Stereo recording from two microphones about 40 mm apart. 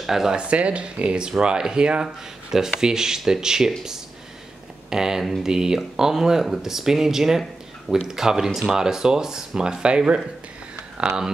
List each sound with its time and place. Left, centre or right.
0.0 s speech: centre
0.3 s speech: right
2.5 s speech: centre
5.5 s speech: centre